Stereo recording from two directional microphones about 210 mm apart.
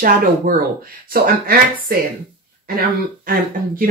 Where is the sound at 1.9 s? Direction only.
45° right (ahead or behind).